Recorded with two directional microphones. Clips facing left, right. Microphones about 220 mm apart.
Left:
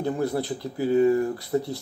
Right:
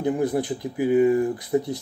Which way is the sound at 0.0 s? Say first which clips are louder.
Right 3 dB; 15° right (ahead or behind).